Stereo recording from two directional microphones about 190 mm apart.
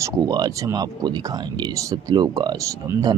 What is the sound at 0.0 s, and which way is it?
Speech, 20° right (ahead or behind).